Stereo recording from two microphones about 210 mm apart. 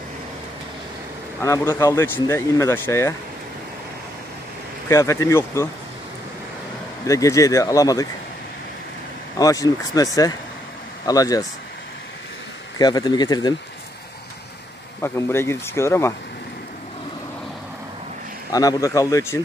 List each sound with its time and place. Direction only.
1.4 s speech: 15° left (ahead or behind)
4.8 s speech: 15° left (ahead or behind)
7.1 s speech: 15° left (ahead or behind)
9.4 s speech: 15° left (ahead or behind)
12.7 s speech: 20° left (ahead or behind)
15.0 s speech: 10° left (ahead or behind)
18.5 s speech: 15° left (ahead or behind)